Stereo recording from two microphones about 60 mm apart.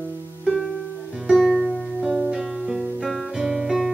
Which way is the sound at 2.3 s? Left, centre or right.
Centre.